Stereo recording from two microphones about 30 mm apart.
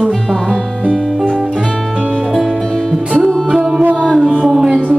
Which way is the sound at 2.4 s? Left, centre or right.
Centre.